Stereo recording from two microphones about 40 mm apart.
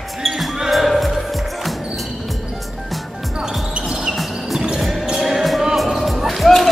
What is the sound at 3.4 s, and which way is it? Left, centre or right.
Basketball bounce, right.